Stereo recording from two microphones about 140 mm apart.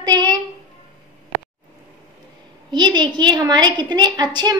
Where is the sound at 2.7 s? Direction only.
30° right (ahead or behind).